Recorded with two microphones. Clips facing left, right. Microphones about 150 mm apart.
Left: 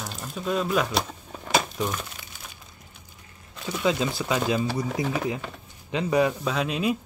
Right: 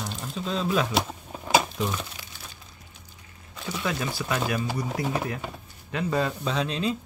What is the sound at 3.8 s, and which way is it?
Speech, 20° left (ahead or behind).